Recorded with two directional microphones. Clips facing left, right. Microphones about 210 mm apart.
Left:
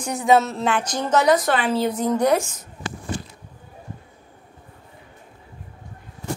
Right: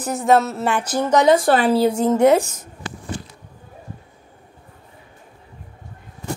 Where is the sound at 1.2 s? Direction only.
30° right (ahead or behind).